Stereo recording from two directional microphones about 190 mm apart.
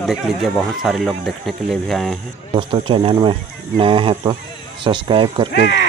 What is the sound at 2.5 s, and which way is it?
Speech, 25° right (ahead or behind).